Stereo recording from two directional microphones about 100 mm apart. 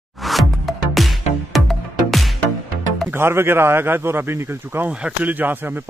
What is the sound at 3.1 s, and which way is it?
Speech, 25° right (ahead or behind).